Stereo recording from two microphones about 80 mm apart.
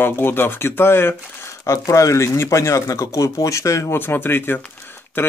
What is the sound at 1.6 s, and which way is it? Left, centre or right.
Speech, left.